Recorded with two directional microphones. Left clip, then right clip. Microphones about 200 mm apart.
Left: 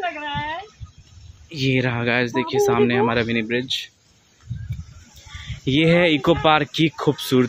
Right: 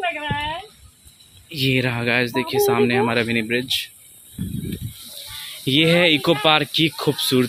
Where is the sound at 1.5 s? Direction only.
50° left (ahead or behind).